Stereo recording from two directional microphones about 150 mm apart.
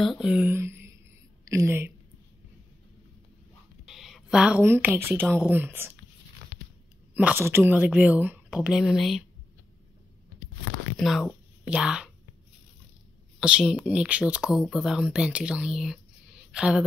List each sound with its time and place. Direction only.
0.0 s a woman's voice: 5° right (ahead or behind); by 1.9 s 20° right (ahead or behind)
3.8 s a woman's voice: centre (ahead or behind)
7.2 s a woman's voice: 10° right (ahead or behind)
11.0 s a woman's voice: centre (ahead or behind)
13.4 s a woman's voice: 5° right (ahead or behind)